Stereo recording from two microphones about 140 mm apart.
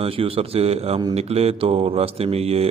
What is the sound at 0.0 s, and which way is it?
A man's voice, 40° right (ahead or behind).